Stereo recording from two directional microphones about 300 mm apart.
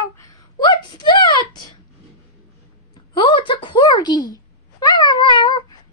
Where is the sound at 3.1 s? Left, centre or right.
Centre.